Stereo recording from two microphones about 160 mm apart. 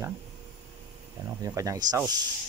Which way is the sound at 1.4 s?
20° right (ahead or behind).